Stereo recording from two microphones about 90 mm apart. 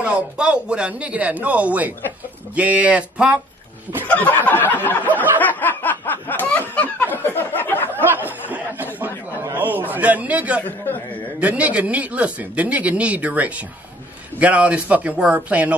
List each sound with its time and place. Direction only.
0.0 s speech: 10° right (ahead or behind)
4.1 s a sound: 20° left (ahead or behind)
5.1 s snicker: 20° left (ahead or behind)
6.7 s a sound: 20° left (ahead or behind)
8.2 s snicker: 20° right (ahead or behind)
9.4 s a man's voice: 25° right (ahead or behind)